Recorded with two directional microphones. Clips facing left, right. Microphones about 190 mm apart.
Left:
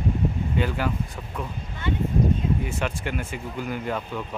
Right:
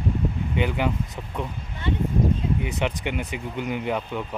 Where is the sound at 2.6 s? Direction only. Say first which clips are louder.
Right 2 dB; 20° right (ahead or behind).